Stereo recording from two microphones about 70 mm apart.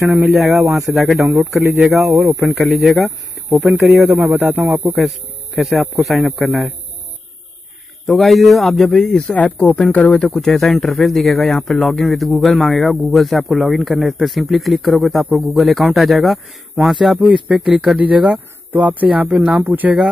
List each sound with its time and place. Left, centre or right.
0.3 s speech: centre
4.4 s speech: right
5.6 s speech: centre
8.1 s speech: centre
17.2 s speech: centre
17.6 s speech: centre
17.9 s speech: centre